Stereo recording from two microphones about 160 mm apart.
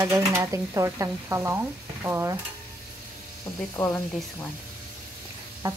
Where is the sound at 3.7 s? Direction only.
15° left (ahead or behind).